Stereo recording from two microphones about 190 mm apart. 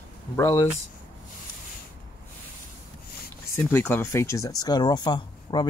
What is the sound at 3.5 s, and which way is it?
Speech, 10° left (ahead or behind).